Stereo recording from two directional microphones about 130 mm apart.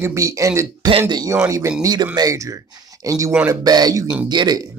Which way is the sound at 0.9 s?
35° right (ahead or behind).